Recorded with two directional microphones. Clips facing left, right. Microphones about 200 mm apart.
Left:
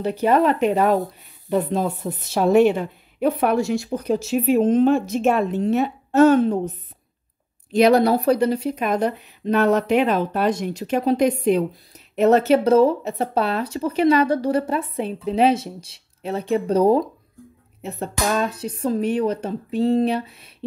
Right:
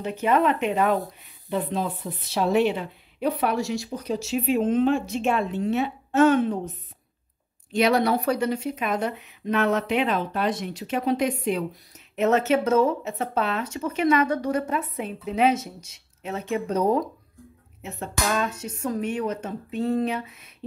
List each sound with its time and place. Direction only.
0.0 s a woman's voice: 35° left (ahead or behind); by 4.4 s 55° left (ahead or behind)
4.5 s speech: 40° left (ahead or behind)
7.7 s speech: 35° left (ahead or behind)